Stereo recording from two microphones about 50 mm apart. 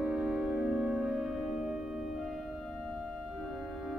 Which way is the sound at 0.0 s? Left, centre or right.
Centre.